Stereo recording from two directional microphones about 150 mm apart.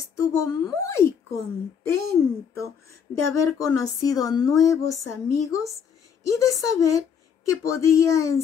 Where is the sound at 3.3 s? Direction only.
20° left (ahead or behind).